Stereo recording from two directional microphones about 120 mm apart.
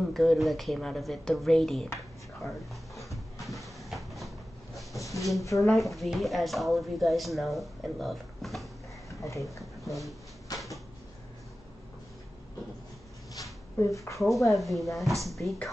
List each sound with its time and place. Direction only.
0.0 s a woman's voice: centre (ahead or behind)
2.4 s a sound: centre (ahead or behind)
5.4 s speech: 25° left (ahead or behind)
5.7 s a woman's voice: centre (ahead or behind)
10.5 s a sound: 30° left (ahead or behind)
13.7 s speech: 25° left (ahead or behind)
14.2 s a woman's voice: centre (ahead or behind)